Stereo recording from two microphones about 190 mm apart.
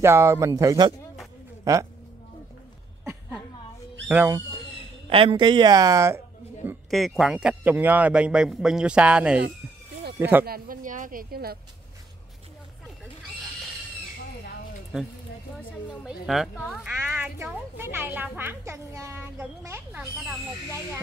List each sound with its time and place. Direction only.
0.0 s speech: 15° right (ahead or behind)
4.1 s speech: 10° right (ahead or behind)
5.1 s speech: 25° right (ahead or behind); by 6.8 s 10° right (ahead or behind)
6.9 s a man's voice: centre (ahead or behind)
10.4 s a woman's voice: 50° right (ahead or behind)
15.5 s a woman's voice: centre (ahead or behind)